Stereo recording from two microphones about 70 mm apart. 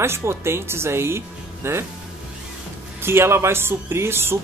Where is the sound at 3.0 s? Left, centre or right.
Right.